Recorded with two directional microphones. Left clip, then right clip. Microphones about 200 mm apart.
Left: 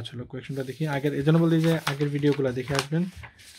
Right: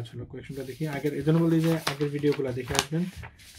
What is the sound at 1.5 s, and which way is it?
Speech, 30° left (ahead or behind).